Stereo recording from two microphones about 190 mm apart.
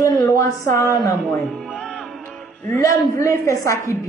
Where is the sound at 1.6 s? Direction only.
5° left (ahead or behind).